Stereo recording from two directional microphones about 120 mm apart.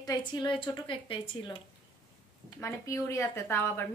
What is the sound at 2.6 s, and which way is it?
A woman's voice, 25° left (ahead or behind).